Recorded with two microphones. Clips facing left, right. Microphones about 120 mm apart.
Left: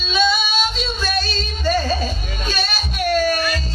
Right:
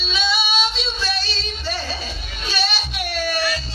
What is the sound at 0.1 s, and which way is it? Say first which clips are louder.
Female singing: left 5 dB; 45° left (ahead or behind).